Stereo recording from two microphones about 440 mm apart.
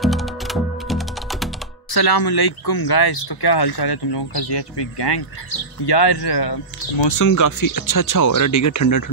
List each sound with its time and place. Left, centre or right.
0.0 s typing: centre
1.9 s speech: left
7.2 s speech: left